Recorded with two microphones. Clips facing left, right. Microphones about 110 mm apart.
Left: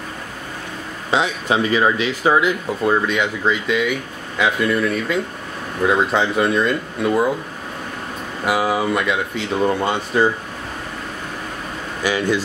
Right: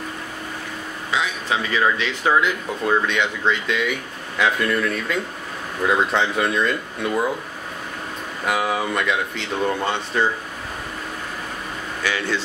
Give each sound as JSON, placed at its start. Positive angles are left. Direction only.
{"t": 1.1, "sound": "speech", "side_deg": 30}
{"t": 1.7, "sound": "speech", "side_deg": 15}
{"t": 8.5, "sound": "speech", "side_deg": 5}
{"t": 12.0, "sound": "speech", "side_deg": 15}